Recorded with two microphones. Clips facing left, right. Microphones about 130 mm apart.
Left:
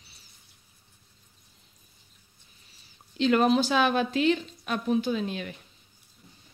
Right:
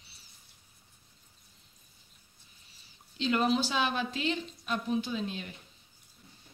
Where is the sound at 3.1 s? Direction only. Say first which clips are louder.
Left 6 dB; 60° left (ahead or behind).